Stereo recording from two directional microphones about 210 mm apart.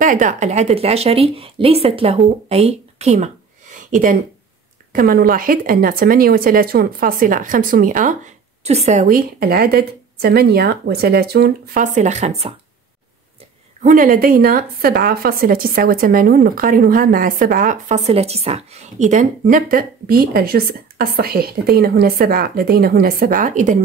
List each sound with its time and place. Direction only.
0.0 s a woman's voice: 40° right (ahead or behind)
3.7 s a sound: 40° right (ahead or behind)
4.9 s a woman's voice: 45° right (ahead or behind)
13.8 s a woman's voice: 40° right (ahead or behind)